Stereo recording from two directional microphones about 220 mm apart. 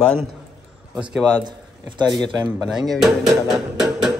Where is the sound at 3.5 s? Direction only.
Centre (ahead or behind).